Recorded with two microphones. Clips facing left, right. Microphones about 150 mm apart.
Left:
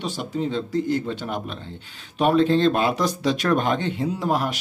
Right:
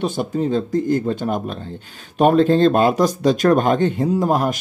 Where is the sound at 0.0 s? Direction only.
50° right (ahead or behind).